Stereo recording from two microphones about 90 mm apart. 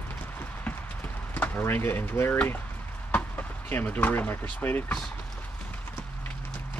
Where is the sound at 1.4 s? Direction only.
20° left (ahead or behind).